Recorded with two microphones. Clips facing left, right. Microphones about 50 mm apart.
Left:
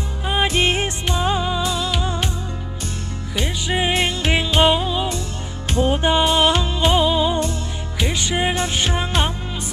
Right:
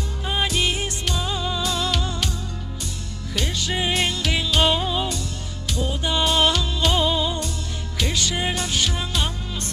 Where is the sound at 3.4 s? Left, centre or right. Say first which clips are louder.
Left 3 dB; left.